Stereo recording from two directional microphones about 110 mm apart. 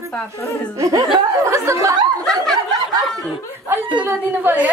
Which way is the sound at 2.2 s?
5° left (ahead or behind).